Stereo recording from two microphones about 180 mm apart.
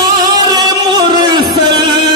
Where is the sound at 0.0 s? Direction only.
20° right (ahead or behind).